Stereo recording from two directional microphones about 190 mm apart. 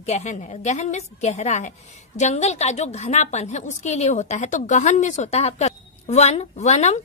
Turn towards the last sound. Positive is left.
turn(degrees=35)  # may be behind; listen again after turning